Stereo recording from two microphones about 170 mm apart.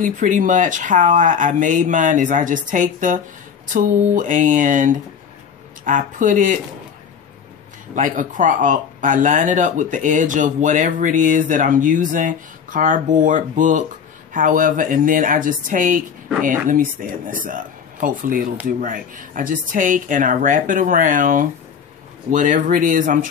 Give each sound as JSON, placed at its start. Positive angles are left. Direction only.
{"t": 0.0, "sound": "speech", "side_deg": -50}
{"t": 7.9, "sound": "speech", "side_deg": -50}